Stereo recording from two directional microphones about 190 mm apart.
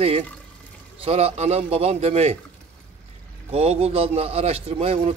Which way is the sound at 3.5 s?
30° right (ahead or behind).